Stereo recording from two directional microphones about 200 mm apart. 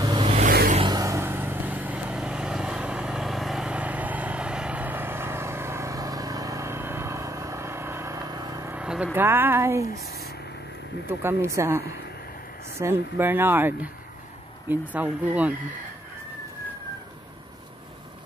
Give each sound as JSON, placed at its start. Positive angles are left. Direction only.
{"t": 0.0, "sound": "vehicle", "side_deg": -20}
{"t": 0.3, "sound": "vehicle", "side_deg": -35}
{"t": 0.7, "sound": "vehicle", "side_deg": -20}
{"t": 11.1, "sound": "speech", "side_deg": -15}